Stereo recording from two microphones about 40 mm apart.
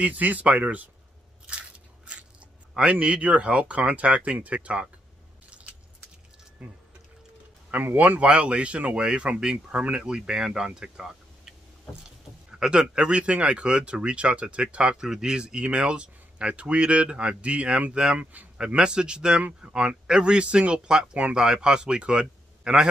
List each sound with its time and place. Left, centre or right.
0.0 s speech: right
2.7 s speech: right
6.6 s speech: right
7.7 s speech: right
8.2 s speech: right
18.8 s a man's voice: right